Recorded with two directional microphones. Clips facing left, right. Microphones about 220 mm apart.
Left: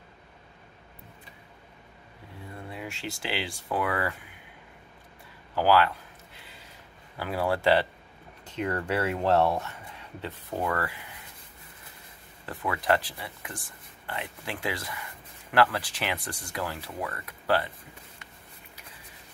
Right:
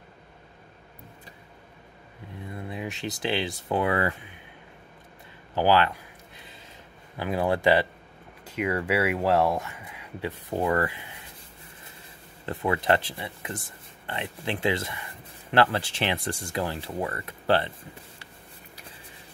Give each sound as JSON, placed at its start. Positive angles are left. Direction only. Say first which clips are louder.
{"t": 2.7, "sound": "speech", "louder": "right 4 dB", "side_deg": -20}
{"t": 5.5, "sound": "a sound", "louder": "right 1 dB", "side_deg": -20}
{"t": 7.2, "sound": "speech", "louder": "right 3 dB", "side_deg": -20}
{"t": 12.4, "sound": "speech", "louder": "right 3 dB", "side_deg": -25}